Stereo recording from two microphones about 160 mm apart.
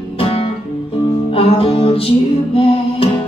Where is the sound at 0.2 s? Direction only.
35° left (ahead or behind).